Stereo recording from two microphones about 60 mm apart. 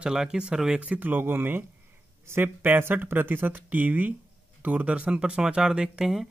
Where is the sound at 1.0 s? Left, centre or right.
Right.